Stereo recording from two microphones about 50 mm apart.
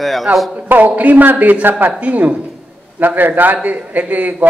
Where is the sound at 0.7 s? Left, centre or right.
Right.